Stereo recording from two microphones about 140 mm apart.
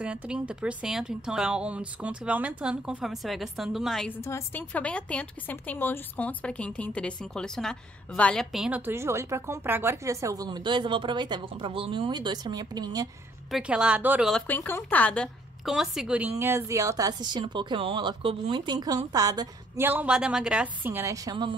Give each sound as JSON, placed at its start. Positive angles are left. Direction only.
{"t": 0.0, "sound": "a woman's voice", "side_deg": -10}
{"t": 4.2, "sound": "a woman's voice", "side_deg": 15}
{"t": 13.5, "sound": "a woman's voice", "side_deg": -5}
{"t": 14.5, "sound": "speech", "side_deg": 15}
{"t": 15.6, "sound": "a woman's voice", "side_deg": -5}
{"t": 19.8, "sound": "a woman's voice", "side_deg": -10}